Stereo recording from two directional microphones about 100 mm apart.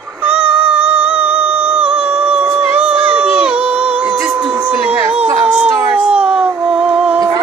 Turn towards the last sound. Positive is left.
turn(degrees=-10)  # may be behind; listen again after turning